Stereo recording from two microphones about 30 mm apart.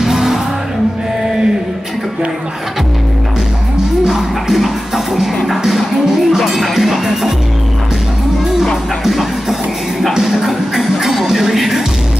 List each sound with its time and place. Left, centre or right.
0.0 s music: centre
4.0 s speech: centre
8.6 s music: centre